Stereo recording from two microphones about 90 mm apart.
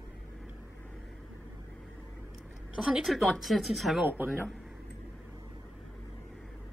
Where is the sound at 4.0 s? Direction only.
20° right (ahead or behind).